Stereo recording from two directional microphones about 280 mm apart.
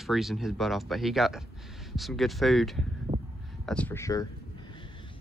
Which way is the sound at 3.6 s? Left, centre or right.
Centre.